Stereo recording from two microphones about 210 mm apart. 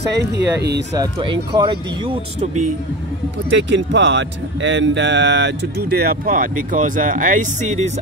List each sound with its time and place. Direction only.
0.1 s speech: 55° right (ahead or behind)
0.9 s speech: 25° right (ahead or behind)
2.4 s a man's voice: 35° right (ahead or behind)
3.5 s speech: 55° right (ahead or behind); by 7.4 s 35° right (ahead or behind)